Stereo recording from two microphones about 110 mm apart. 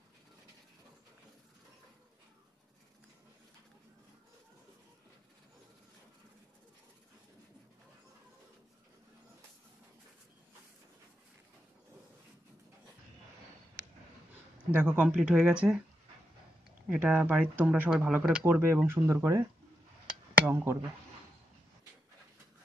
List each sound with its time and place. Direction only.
14.7 s speech: 10° right (ahead or behind)
16.9 s speech: 10° right (ahead or behind)